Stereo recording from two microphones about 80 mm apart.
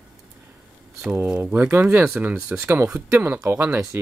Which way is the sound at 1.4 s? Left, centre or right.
Right.